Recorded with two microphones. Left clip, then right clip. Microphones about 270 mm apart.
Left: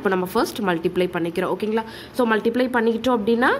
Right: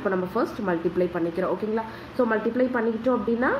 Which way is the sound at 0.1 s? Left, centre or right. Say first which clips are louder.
Left 4 dB; left.